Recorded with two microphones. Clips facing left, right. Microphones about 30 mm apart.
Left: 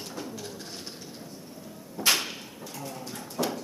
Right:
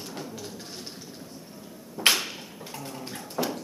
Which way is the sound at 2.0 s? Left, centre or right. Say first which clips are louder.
Right 3 dB; centre.